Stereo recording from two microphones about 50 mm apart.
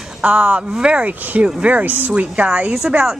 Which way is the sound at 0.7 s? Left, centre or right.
Right.